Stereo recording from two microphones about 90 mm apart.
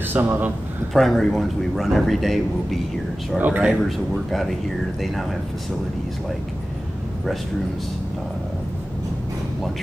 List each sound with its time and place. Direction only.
0.1 s speech: 20° right (ahead or behind)
0.9 s a man's voice: 5° left (ahead or behind)
3.3 s speech: 20° right (ahead or behind)
3.9 s a man's voice: centre (ahead or behind)